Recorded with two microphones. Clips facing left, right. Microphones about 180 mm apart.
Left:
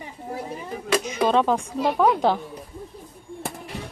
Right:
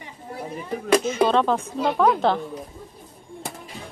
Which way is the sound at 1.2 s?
10° left (ahead or behind).